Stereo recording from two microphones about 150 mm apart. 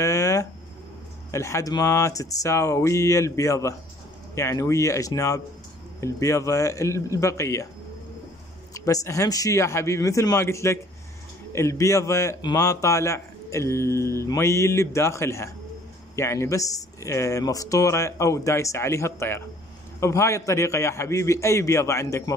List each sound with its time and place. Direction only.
0.0 s a sound: 20° left (ahead or behind)
1.3 s a man's voice: 20° left (ahead or behind)
8.7 s a man's voice: 20° left (ahead or behind)